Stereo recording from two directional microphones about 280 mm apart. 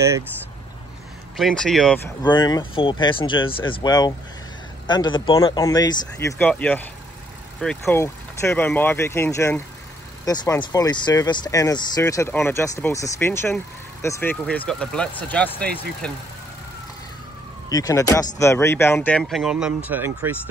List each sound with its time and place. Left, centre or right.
1.3 s speech: centre
2.2 s speech: centre
17.6 s speech: centre